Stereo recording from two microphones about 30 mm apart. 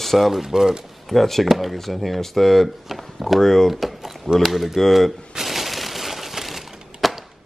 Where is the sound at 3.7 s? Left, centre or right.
Centre.